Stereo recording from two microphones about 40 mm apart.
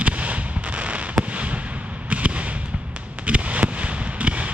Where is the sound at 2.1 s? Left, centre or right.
Right.